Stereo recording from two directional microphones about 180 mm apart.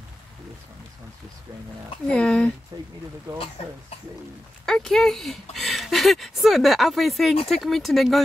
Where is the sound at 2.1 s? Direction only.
5° left (ahead or behind).